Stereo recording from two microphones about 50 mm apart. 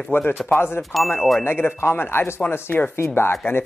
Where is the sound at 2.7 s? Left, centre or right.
Left.